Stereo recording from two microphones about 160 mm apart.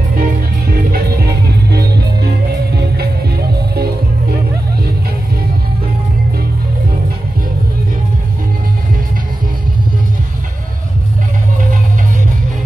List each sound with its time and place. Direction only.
0.1 s music: 65° right (ahead or behind)
1.7 s music: 90° right